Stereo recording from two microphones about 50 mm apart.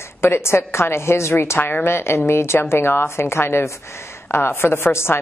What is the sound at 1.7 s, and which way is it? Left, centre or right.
A woman's voice, left.